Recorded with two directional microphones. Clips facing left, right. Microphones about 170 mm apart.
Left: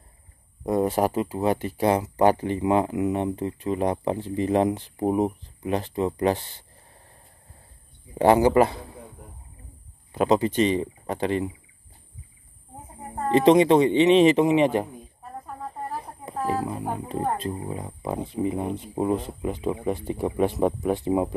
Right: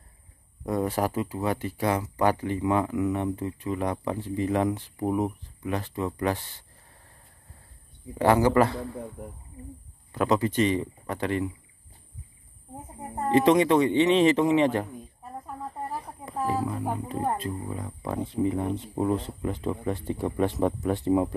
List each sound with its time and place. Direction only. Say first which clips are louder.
0.7 s speech: left 4 dB; 20° left (ahead or behind)
8.2 s speech: left 3 dB; 20° left (ahead or behind)
10.1 s speech: left 3 dB; 20° left (ahead or behind)
13.3 s speech: left 3 dB; 25° left (ahead or behind)
16.0 s a sound: left 1 dB; 20° left (ahead or behind)
17.1 s speech: left 4 dB; 25° left (ahead or behind)